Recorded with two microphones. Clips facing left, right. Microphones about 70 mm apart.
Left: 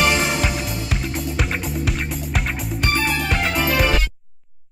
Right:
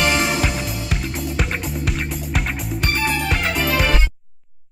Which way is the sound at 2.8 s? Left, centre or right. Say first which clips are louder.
Even; centre.